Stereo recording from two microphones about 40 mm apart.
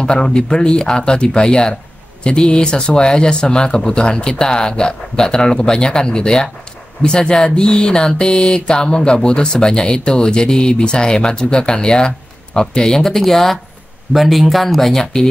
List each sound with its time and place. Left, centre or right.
0.0 s speech: centre